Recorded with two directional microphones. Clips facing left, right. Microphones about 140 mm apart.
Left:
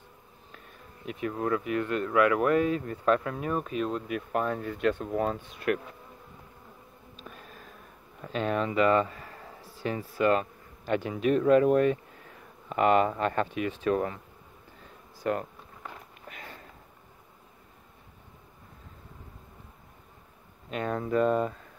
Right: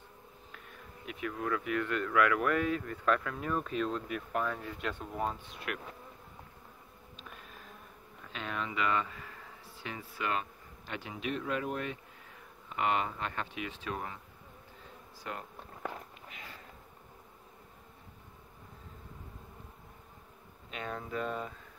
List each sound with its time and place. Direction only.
1.0 s speech: 35° left (ahead or behind)
3.3 s speech: 15° left (ahead or behind)
4.3 s speech: 35° left (ahead or behind)
4.6 s speech: 50° left (ahead or behind)
5.1 s speech: 70° left (ahead or behind)
5.7 s speech: 45° left (ahead or behind)
8.2 s speech: 40° left (ahead or behind)
15.2 s speech: 55° left (ahead or behind)
20.7 s speech: 50° left (ahead or behind)